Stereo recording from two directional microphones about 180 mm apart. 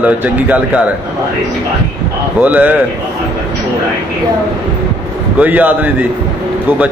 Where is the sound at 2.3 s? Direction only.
10° right (ahead or behind).